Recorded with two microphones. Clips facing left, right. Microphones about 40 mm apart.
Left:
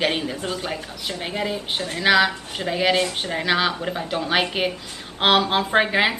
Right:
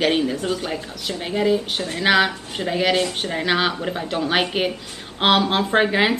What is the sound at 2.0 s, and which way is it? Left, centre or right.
Speech, centre.